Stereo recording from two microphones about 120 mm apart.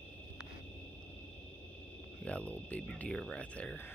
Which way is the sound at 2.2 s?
10° left (ahead or behind).